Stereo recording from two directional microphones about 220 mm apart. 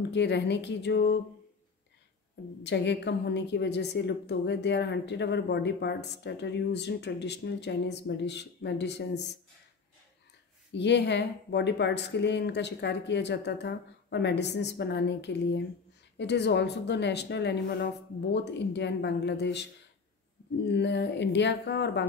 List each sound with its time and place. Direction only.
0.1 s a woman's voice: 50° left (ahead or behind)
2.6 s a woman's voice: 50° left (ahead or behind)
10.7 s a woman's voice: 50° left (ahead or behind)
20.6 s a woman's voice: 50° left (ahead or behind)